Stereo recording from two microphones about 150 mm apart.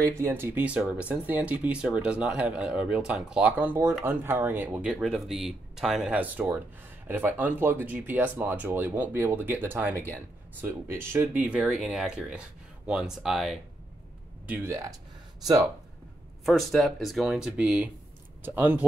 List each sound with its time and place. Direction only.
0.2 s speech: 15° right (ahead or behind)
11.6 s speech: centre (ahead or behind)
14.4 s speech: 15° right (ahead or behind)
16.4 s speech: centre (ahead or behind)